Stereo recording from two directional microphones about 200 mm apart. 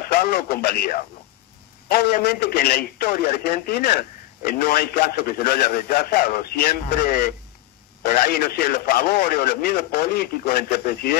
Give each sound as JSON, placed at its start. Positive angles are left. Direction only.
{"t": 0.1, "sound": "speech", "side_deg": 50}